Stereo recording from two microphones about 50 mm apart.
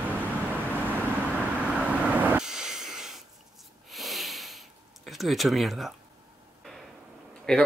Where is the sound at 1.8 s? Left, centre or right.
Right.